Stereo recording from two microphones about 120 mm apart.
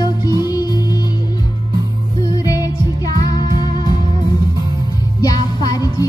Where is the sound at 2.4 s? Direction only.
30° left (ahead or behind).